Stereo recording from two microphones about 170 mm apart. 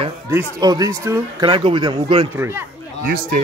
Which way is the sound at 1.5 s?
30° right (ahead or behind).